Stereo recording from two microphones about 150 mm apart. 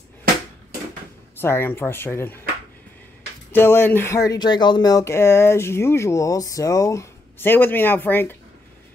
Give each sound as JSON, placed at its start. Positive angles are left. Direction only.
{"t": 1.4, "sound": "speech", "side_deg": 15}
{"t": 3.5, "sound": "speech", "side_deg": 15}